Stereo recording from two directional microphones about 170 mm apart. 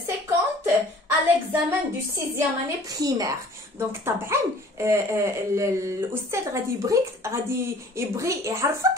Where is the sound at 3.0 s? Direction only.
20° right (ahead or behind).